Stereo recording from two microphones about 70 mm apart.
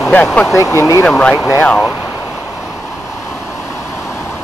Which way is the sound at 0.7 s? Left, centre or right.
Left.